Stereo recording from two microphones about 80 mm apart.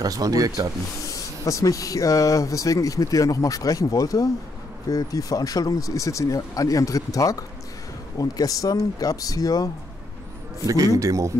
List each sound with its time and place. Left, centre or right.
0.0 s a man's voice: right
1.1 s speech: left
10.7 s a man's voice: right